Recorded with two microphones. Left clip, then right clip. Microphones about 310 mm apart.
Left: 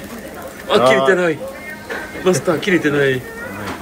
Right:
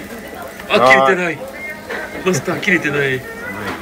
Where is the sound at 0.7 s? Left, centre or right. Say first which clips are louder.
Right 2 dB; centre.